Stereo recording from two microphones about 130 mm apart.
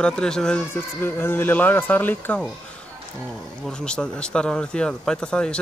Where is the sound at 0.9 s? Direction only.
15° left (ahead or behind).